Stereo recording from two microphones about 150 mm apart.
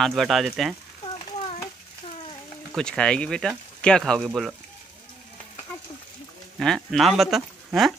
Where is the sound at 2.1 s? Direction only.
40° left (ahead or behind).